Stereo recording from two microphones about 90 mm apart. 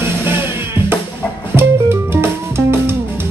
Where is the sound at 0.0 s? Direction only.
25° right (ahead or behind).